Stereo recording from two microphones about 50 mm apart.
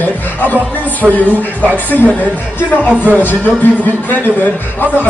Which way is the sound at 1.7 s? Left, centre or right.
Left.